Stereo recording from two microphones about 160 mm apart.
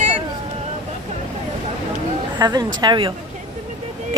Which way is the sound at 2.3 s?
25° right (ahead or behind).